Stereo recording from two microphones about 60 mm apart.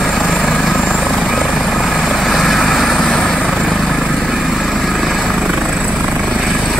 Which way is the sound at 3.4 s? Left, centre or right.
Centre.